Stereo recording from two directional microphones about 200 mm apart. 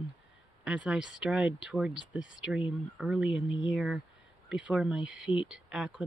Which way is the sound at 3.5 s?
70° left (ahead or behind).